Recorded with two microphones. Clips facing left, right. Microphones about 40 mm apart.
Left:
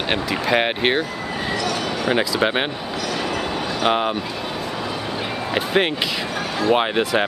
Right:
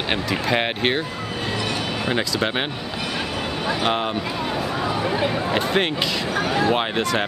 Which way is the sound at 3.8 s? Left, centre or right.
Centre.